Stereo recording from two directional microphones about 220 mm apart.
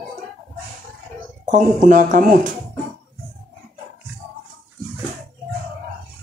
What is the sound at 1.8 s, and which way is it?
Speech, 35° right (ahead or behind).